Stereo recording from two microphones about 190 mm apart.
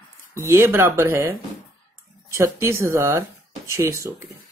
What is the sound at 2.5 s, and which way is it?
Speech, 15° right (ahead or behind).